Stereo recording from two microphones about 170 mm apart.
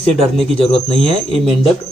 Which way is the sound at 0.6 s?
35° left (ahead or behind).